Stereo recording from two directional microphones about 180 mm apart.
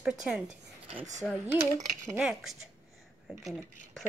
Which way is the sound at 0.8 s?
35° right (ahead or behind).